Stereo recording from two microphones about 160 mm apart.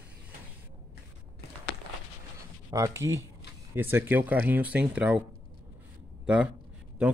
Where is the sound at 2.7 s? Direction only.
20° right (ahead or behind).